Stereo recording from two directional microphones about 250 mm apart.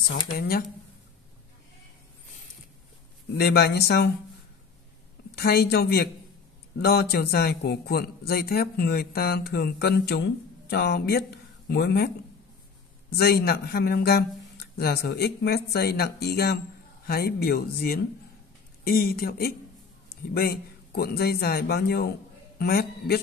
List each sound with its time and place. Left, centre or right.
0.4 s a man's voice: left
3.3 s a man's voice: left
5.3 s a man's voice: left
13.1 s a man's voice: left